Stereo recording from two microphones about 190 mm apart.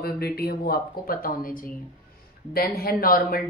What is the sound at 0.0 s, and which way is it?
Speech, 55° left (ahead or behind).